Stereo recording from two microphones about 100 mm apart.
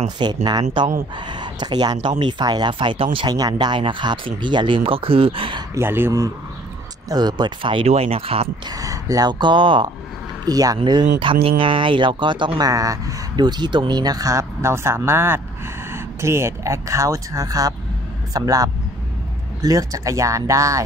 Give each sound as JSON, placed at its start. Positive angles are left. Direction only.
{"t": 0.2, "sound": "speech", "side_deg": -45}
{"t": 3.3, "sound": "speech", "side_deg": -40}
{"t": 5.8, "sound": "speech", "side_deg": -20}
{"t": 7.1, "sound": "speech", "side_deg": -45}
{"t": 8.6, "sound": "speech", "side_deg": -35}
{"t": 9.3, "sound": "speech", "side_deg": -50}
{"t": 10.4, "sound": "speech", "side_deg": -35}
{"t": 10.8, "sound": "speech", "side_deg": -50}
{"t": 12.6, "sound": "speech", "side_deg": -35}
{"t": 13.4, "sound": "speech", "side_deg": -45}